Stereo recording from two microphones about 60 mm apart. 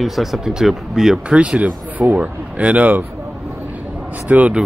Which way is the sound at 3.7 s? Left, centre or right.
Right.